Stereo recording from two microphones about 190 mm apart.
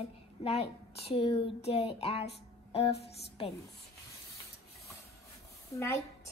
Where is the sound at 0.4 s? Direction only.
30° left (ahead or behind).